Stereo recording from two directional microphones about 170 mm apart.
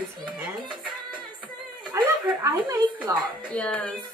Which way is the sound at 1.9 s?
20° right (ahead or behind).